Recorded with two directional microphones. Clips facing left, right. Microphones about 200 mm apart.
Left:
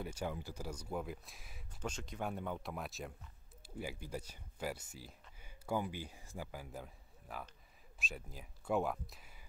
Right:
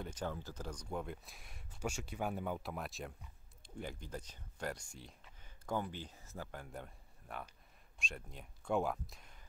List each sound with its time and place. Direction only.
0.0 s speech: 10° left (ahead or behind)